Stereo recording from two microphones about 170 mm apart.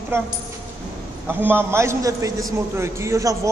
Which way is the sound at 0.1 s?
15° right (ahead or behind).